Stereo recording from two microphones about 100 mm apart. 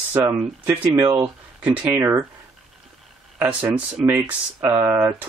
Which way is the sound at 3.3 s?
20° right (ahead or behind).